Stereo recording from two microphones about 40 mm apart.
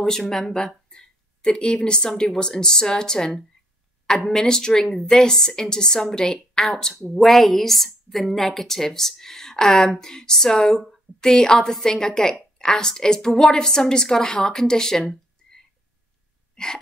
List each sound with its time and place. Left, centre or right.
0.0 s a woman's voice: centre
7.2 s a woman's voice: centre
16.5 s gasp: centre